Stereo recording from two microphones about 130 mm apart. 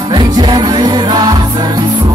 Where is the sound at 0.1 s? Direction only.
35° right (ahead or behind).